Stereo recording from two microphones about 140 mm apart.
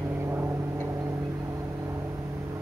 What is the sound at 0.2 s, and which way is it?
Vehicle, 20° right (ahead or behind).